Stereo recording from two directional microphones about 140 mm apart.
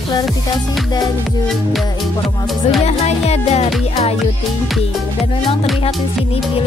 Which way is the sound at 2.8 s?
50° left (ahead or behind).